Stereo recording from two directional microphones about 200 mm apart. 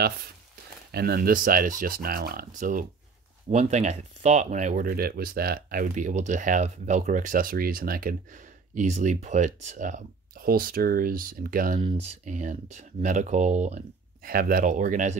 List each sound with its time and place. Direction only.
0.9 s speech: 50° right (ahead or behind)